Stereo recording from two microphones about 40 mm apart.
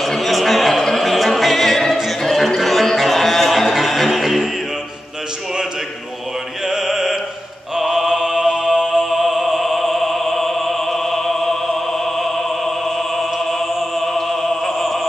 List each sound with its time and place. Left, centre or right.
0.0 s music: centre
6.7 s music: centre
7.7 s mantra: centre
9.2 s opera: centre
14.0 s opera: centre
14.8 s opera: centre